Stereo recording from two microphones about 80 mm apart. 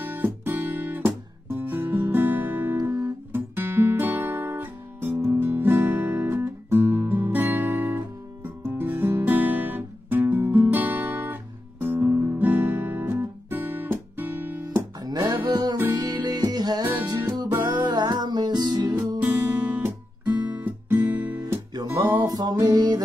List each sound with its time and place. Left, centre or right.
0.0 s guitar: right
2.8 s guitar: right
3.3 s guitar: right
5.2 s music: right
11.8 s guitar: right
15.0 s music: right
15.9 s music: right
19.2 s guitar: right
20.5 s music: right
22.1 s music: right